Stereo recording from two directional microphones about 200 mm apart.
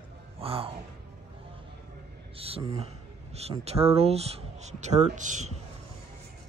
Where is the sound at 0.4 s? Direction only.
30° right (ahead or behind).